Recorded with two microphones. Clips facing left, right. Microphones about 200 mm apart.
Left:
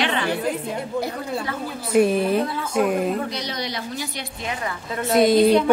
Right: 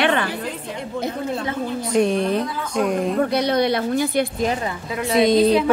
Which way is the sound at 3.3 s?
55° right (ahead or behind).